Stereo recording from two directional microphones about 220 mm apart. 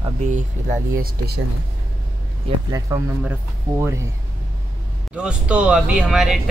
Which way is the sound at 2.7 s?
15° right (ahead or behind).